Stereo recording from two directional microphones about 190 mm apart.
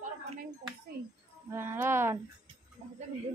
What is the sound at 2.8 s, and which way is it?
Speech, 30° right (ahead or behind).